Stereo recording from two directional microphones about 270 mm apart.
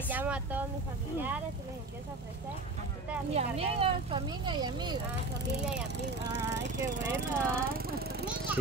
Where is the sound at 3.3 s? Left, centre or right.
Right.